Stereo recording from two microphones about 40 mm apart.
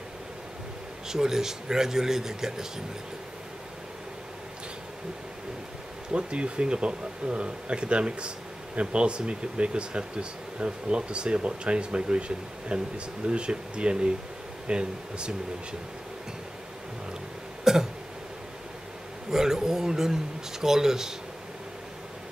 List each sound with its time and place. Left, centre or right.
1.0 s a man's voice: centre
6.1 s speech: right
17.7 s throat clearing: centre
19.3 s a sound: centre
20.6 s a man's voice: centre